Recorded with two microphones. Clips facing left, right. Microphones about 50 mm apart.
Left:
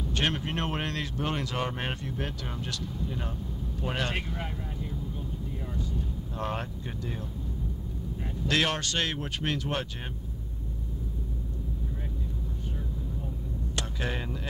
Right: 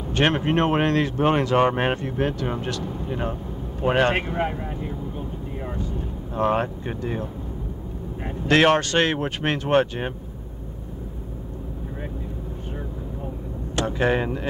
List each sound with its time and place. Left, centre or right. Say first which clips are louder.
0.0 s speech: right 8 dB; right
5.7 s vehicle: right 5 dB; right
8.2 s speech: right 9 dB; right
13.7 s speech: right 13 dB; right